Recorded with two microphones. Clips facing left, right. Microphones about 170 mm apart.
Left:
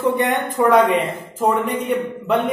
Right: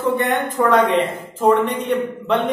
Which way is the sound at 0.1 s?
15° left (ahead or behind).